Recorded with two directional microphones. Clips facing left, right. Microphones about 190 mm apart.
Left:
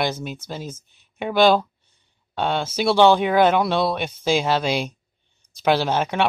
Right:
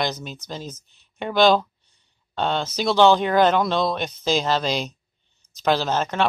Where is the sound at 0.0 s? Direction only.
10° left (ahead or behind).